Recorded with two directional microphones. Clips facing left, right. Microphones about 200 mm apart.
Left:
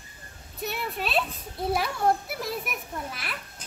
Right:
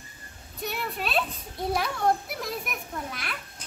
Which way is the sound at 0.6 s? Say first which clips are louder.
Left 1 dB; centre (ahead or behind).